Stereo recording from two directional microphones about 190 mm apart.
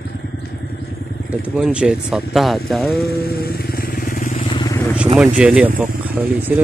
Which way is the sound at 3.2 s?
55° left (ahead or behind).